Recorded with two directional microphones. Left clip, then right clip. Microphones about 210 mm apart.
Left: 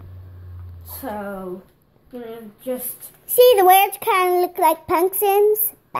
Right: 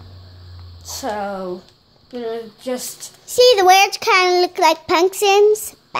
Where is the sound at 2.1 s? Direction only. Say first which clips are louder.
Right 8 dB; 30° right (ahead or behind).